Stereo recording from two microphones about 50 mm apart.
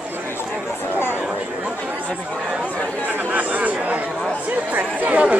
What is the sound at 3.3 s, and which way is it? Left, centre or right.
Chatter, right.